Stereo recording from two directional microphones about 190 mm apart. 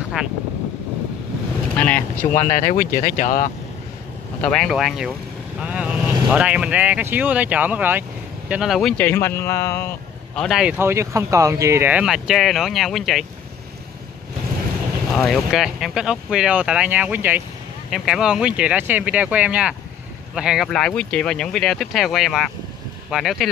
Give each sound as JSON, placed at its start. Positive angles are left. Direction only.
{"t": 0.2, "sound": "vehicle", "side_deg": -5}
{"t": 1.8, "sound": "boat", "side_deg": 5}
{"t": 2.3, "sound": "speech", "side_deg": 45}
{"t": 4.4, "sound": "speech", "side_deg": 5}
{"t": 10.3, "sound": "speech", "side_deg": 0}
{"t": 15.1, "sound": "speech", "side_deg": 0}